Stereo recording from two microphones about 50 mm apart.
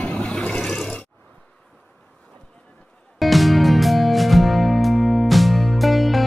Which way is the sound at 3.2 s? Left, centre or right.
Centre.